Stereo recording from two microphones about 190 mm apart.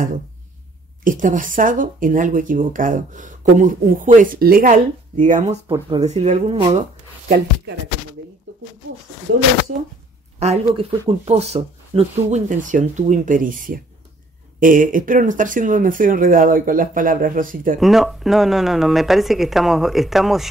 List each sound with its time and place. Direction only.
1.0 s speech: 45° right (ahead or behind)
5.7 s speech: 20° right (ahead or behind)
6.0 s speech: 35° right (ahead or behind)
10.4 s speech: 35° right (ahead or behind)
17.7 s speech: centre (ahead or behind)